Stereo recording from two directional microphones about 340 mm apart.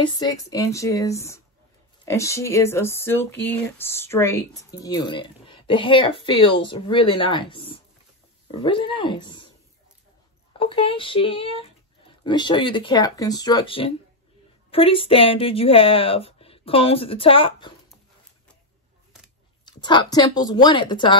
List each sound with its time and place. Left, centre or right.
0.0 s speech: centre
10.6 s speech: centre
19.6 s speech: centre